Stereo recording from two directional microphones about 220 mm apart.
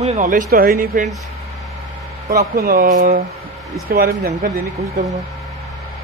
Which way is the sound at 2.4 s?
45° right (ahead or behind).